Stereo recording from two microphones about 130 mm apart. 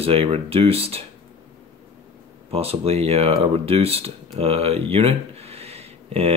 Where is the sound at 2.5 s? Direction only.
50° right (ahead or behind).